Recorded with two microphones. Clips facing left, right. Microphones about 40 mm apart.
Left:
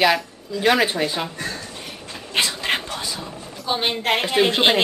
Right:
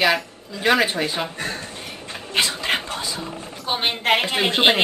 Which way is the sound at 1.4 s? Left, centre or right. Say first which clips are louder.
Right 1 dB; right.